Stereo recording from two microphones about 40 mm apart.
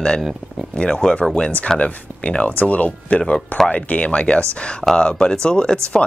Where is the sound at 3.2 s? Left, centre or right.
Centre.